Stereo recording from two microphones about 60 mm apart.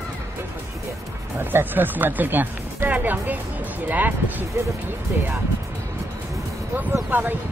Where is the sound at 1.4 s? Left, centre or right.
Right.